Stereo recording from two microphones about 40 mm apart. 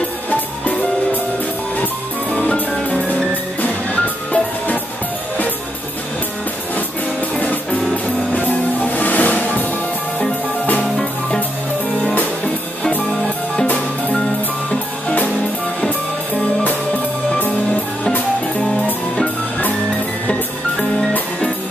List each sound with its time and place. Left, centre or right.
2.3 s music: left
7.3 s music: left